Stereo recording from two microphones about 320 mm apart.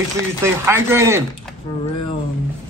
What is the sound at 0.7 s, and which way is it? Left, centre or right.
Speech, centre.